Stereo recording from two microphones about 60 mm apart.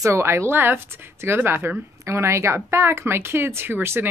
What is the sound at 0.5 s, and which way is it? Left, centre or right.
Speech, right.